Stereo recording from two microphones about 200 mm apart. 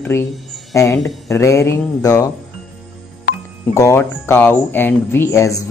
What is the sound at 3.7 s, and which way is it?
Speech, 15° left (ahead or behind).